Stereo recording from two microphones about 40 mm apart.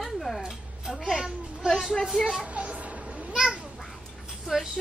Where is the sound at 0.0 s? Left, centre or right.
Centre.